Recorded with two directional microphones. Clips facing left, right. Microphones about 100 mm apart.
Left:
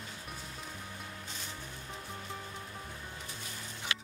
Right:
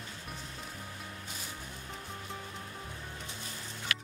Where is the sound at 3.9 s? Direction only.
25° left (ahead or behind).